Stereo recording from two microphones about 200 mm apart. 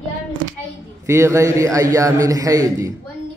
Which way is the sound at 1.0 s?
15° right (ahead or behind).